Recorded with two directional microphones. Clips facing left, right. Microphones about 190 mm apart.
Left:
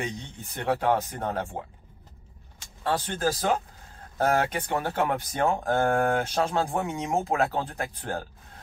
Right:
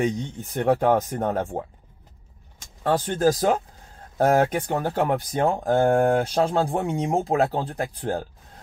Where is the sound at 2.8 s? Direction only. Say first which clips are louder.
Right 6 dB; 45° right (ahead or behind).